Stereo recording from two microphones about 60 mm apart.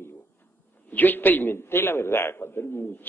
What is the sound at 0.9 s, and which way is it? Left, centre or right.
A man's voice, left.